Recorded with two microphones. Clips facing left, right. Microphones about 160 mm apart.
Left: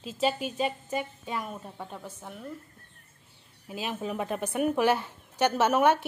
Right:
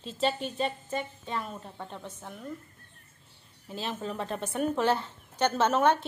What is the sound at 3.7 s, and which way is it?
A woman's voice, 10° left (ahead or behind).